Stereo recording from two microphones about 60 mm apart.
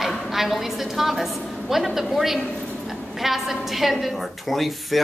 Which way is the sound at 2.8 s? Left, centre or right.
Centre.